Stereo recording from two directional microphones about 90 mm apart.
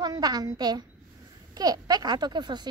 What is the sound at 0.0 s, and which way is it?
A woman's voice, 45° right (ahead or behind).